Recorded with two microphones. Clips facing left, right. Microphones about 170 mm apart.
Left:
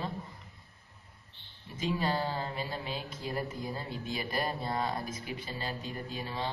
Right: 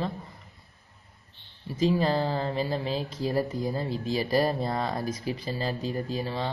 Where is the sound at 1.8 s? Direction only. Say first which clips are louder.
Right 7 dB; 35° right (ahead or behind).